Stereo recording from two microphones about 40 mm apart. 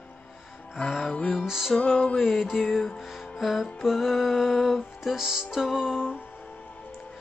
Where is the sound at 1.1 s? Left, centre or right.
Left.